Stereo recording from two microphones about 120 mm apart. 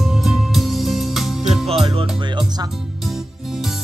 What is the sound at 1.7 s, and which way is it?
Music, 50° right (ahead or behind).